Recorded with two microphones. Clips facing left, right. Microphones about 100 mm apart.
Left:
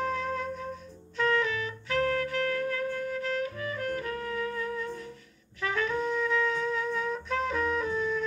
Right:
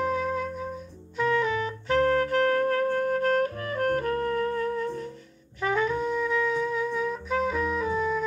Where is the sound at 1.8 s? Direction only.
35° right (ahead or behind).